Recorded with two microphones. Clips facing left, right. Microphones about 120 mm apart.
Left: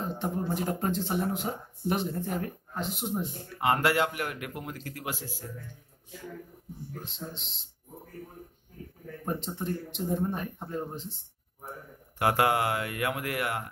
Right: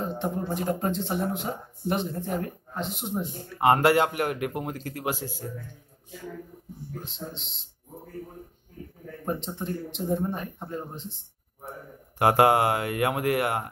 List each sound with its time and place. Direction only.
0.0 s speech: centre (ahead or behind)
3.5 s speech: 40° right (ahead or behind)
4.2 s speech: 35° right (ahead or behind)
7.1 s speech: centre (ahead or behind)
9.2 s speech: centre (ahead or behind)
12.2 s speech: 35° right (ahead or behind)